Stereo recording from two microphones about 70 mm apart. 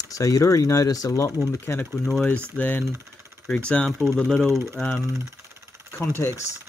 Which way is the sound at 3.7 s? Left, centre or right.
Centre.